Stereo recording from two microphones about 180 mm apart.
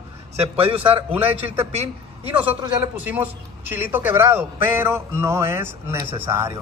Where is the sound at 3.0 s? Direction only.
10° right (ahead or behind).